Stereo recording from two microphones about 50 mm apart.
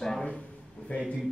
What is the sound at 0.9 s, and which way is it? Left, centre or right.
Speech, left.